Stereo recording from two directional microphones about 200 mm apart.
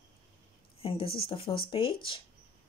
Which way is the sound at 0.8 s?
30° left (ahead or behind).